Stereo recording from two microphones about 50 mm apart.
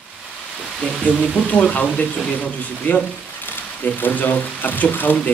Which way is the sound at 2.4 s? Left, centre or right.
Left.